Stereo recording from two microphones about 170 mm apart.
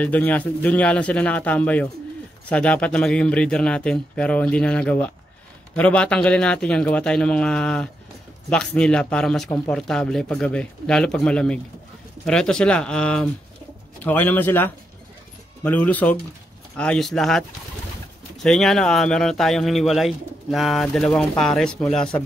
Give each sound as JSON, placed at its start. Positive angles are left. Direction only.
{"t": 0.0, "sound": "speech", "side_deg": 10}